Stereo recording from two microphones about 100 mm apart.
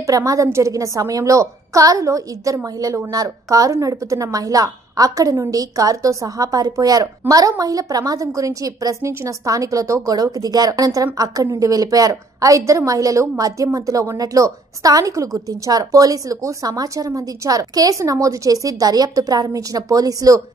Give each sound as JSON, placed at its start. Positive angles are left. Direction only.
{"t": 0.0, "sound": "a woman's voice", "side_deg": -35}